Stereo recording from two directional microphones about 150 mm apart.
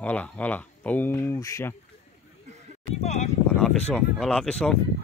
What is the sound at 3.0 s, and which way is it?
Speech, 50° left (ahead or behind).